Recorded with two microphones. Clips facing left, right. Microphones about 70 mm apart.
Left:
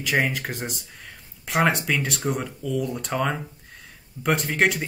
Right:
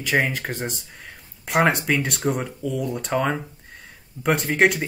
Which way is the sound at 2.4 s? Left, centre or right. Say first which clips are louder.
Even; centre.